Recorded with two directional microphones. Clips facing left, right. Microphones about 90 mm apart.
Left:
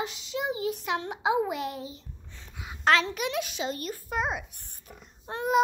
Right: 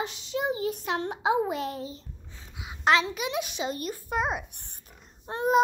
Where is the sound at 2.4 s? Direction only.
10° right (ahead or behind).